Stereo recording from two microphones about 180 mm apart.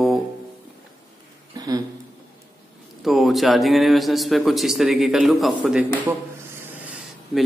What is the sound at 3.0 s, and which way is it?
A man's voice, centre (ahead or behind).